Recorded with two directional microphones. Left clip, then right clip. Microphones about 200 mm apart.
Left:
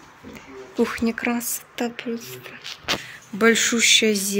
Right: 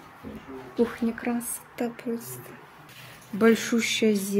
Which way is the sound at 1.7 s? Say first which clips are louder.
Left 3 dB; centre (ahead or behind).